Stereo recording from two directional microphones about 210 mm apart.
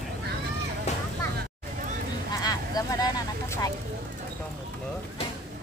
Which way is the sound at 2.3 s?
20° left (ahead or behind).